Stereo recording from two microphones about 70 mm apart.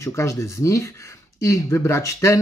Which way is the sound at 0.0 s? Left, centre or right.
Left.